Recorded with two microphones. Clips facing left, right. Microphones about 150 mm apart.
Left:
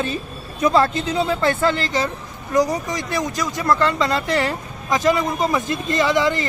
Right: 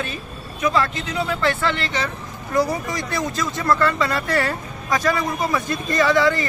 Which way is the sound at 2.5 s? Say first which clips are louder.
Left 2 dB; 20° left (ahead or behind).